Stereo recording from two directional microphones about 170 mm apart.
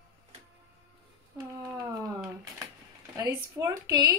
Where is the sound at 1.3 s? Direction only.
15° right (ahead or behind).